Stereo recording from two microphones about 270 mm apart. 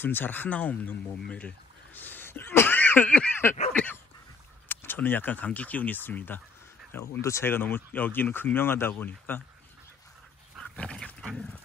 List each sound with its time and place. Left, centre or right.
0.0 s speech: centre
2.0 s a sound: centre
4.6 s speech: centre
10.5 s dog: centre